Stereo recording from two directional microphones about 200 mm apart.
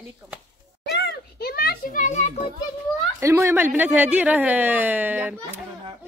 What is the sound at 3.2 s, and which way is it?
Speech, 15° right (ahead or behind).